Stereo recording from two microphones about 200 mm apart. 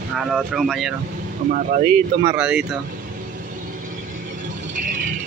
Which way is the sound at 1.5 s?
40° right (ahead or behind).